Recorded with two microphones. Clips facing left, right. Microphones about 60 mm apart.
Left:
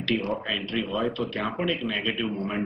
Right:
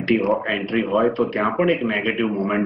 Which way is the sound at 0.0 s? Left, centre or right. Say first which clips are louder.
Right 8 dB; right.